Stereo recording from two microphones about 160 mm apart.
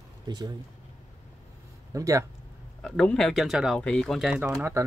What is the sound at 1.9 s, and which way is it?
Speech, 20° right (ahead or behind).